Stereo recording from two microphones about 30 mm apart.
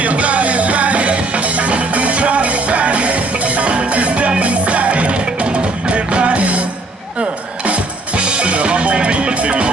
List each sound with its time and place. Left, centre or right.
0.0 s music: right